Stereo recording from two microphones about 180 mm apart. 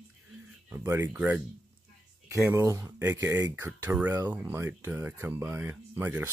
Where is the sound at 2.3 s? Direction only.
15° right (ahead or behind).